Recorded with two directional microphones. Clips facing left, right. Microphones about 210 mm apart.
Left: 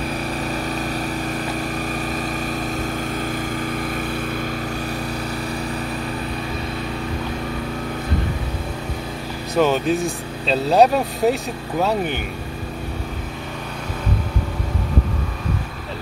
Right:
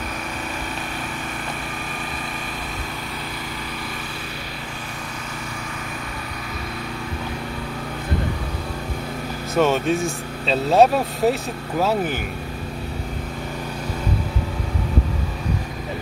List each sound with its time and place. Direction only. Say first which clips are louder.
9.6 s speech: left 1 dB; centre (ahead or behind)